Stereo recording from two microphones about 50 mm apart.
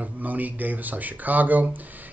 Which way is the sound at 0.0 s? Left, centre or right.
Right.